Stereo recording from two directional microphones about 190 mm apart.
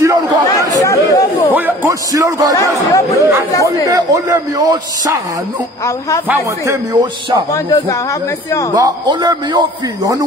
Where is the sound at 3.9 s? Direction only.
20° right (ahead or behind).